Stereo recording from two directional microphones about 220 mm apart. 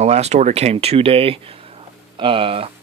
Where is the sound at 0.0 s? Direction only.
30° right (ahead or behind).